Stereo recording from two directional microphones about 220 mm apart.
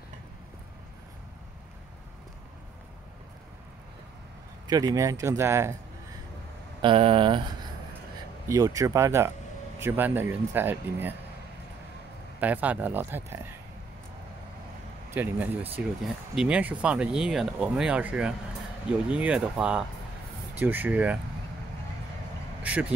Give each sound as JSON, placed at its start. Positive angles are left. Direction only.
{"t": 4.6, "sound": "speech", "side_deg": -15}
{"t": 6.8, "sound": "speech", "side_deg": -25}
{"t": 8.5, "sound": "speech", "side_deg": -15}
{"t": 12.4, "sound": "speech", "side_deg": -5}
{"t": 15.0, "sound": "speech", "side_deg": -10}
{"t": 22.6, "sound": "speech", "side_deg": -5}